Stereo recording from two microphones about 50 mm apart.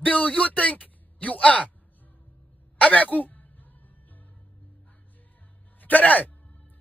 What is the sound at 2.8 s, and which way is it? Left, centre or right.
Throat clearing, left.